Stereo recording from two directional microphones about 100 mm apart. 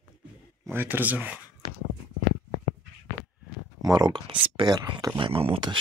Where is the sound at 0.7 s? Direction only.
20° right (ahead or behind).